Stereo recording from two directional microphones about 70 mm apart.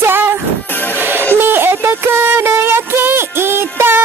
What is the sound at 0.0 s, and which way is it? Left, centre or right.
Music, right.